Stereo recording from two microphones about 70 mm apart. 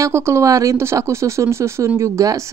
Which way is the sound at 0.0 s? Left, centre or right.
Right.